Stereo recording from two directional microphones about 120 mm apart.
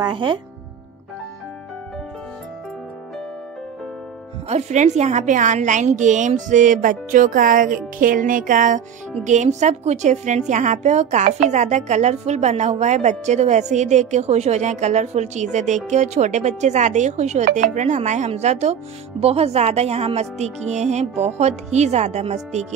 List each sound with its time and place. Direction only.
0.0 s speech: 40° right (ahead or behind)
4.5 s a woman's voice: 70° right (ahead or behind)